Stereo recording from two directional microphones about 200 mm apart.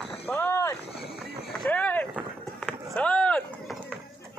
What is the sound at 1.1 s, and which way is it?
Run, centre (ahead or behind).